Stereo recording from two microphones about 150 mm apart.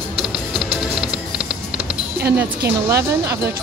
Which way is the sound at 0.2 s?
Centre (ahead or behind).